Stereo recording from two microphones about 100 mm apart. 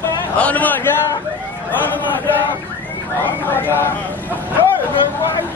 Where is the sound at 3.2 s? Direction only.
20° left (ahead or behind).